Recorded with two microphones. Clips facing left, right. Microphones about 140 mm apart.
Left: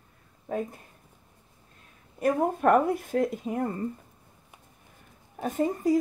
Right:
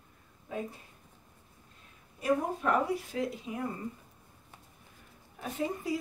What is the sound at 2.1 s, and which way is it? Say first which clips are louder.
Speech: left 5 dB; 55° left (ahead or behind).